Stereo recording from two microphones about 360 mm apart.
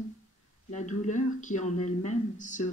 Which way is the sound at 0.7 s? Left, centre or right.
Centre.